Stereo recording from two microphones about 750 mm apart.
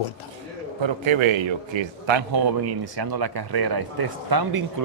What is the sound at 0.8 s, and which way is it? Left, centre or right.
A man's voice, right.